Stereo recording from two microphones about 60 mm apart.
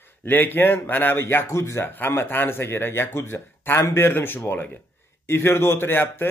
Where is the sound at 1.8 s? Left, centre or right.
Left.